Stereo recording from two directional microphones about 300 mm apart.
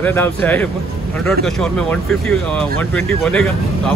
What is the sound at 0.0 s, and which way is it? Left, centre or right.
Speech, centre.